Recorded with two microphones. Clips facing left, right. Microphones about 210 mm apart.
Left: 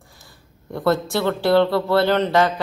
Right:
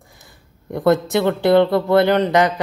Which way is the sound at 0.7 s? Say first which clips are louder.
Right 4 dB; 20° right (ahead or behind).